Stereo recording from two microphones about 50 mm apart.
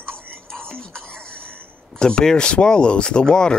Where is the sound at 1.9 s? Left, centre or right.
Centre.